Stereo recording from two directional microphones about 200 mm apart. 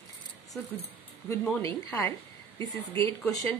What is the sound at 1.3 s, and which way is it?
Speech, 10° left (ahead or behind).